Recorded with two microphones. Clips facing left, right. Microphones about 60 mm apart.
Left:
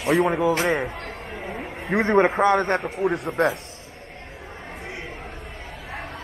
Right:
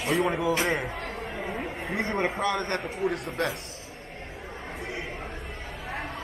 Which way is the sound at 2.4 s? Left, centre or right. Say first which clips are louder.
Left 8 dB; centre.